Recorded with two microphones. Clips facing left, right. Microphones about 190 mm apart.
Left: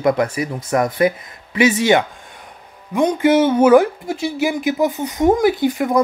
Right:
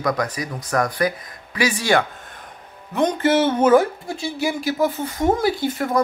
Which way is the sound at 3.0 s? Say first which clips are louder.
Left 4 dB; 10° left (ahead or behind).